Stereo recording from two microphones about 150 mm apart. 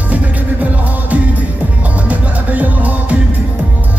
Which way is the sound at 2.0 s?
10° right (ahead or behind).